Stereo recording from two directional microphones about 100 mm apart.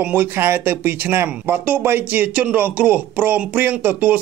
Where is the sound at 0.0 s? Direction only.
15° right (ahead or behind).